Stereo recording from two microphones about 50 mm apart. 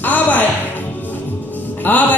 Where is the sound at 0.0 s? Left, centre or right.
Left.